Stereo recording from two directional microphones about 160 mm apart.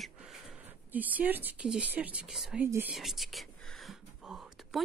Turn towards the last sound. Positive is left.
turn(degrees=-5)  # may be behind; listen again after turning